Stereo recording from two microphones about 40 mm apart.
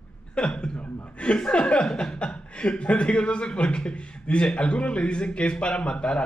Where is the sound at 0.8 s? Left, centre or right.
Left.